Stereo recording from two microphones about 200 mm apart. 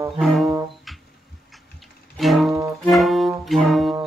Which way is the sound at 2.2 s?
Centre (ahead or behind).